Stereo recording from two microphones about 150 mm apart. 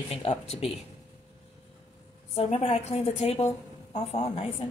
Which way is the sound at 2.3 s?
45° left (ahead or behind).